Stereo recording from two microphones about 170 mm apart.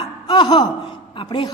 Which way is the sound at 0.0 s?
25° left (ahead or behind).